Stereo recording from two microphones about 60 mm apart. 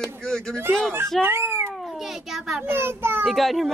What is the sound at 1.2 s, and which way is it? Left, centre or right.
Cat, right.